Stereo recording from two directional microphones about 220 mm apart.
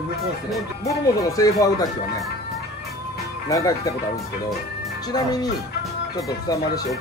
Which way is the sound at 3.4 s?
15° left (ahead or behind).